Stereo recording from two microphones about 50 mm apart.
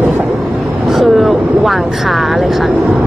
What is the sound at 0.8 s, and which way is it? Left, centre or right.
Speech, centre.